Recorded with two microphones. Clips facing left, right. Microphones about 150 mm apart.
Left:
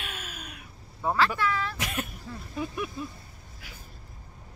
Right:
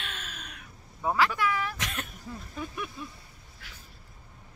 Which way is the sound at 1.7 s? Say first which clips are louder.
Left 4 dB; 10° left (ahead or behind).